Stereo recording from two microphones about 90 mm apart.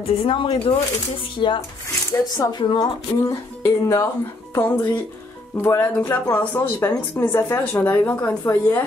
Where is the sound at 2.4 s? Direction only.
50° left (ahead or behind).